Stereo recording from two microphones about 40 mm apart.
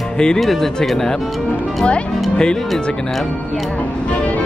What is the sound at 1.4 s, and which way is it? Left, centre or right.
Speech, left.